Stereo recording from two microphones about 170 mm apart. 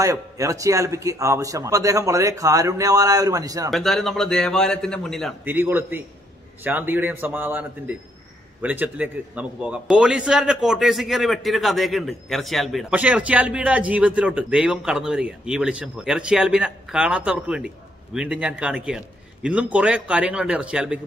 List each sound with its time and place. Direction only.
0.0 s a man's voice: 20° right (ahead or behind)
3.7 s a man's voice: centre (ahead or behind)
5.4 s a man's voice: 10° right (ahead or behind)